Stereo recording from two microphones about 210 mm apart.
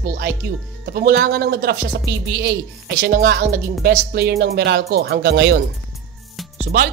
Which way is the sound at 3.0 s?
50° right (ahead or behind).